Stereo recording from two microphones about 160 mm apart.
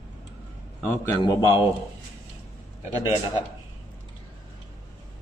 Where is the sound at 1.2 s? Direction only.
30° left (ahead or behind).